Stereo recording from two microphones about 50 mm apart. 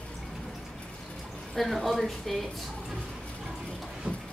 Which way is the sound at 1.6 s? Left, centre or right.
Centre.